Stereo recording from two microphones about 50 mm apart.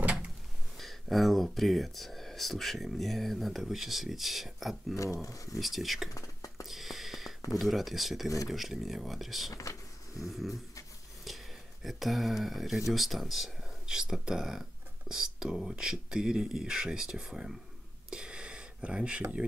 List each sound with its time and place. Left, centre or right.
0.0 s a sound: right
0.7 s speech: centre
4.9 s speech: left
5.6 s speech: centre
6.1 s whispering: left
6.7 s speech: centre
9.5 s a sound: left
11.2 s speech: centre
18.1 s a sound: centre